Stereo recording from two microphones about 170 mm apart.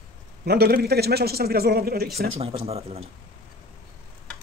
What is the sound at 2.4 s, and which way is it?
Speech, 35° right (ahead or behind).